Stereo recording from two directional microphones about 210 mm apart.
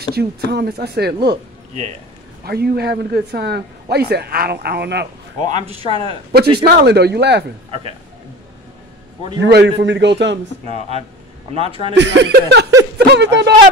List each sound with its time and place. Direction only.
0.1 s a man's voice: 50° right (ahead or behind)
2.4 s a man's voice: 50° right (ahead or behind)
5.9 s speech: 25° left (ahead or behind)
6.6 s a man's voice: 50° right (ahead or behind)
9.4 s a man's voice: 55° right (ahead or behind)
11.5 s speech: 30° right (ahead or behind)
11.9 s a man's voice: 55° right (ahead or behind)